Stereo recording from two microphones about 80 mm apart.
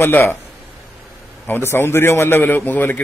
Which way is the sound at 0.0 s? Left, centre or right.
Left.